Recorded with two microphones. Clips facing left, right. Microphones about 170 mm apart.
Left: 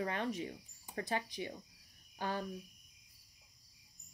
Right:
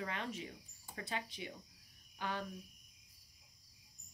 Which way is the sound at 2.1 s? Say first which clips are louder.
Left 3 dB; 40° left (ahead or behind).